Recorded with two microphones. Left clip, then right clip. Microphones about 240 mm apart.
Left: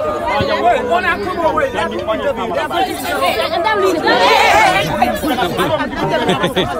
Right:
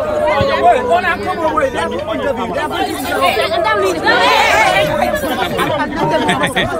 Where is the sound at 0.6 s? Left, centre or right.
Right.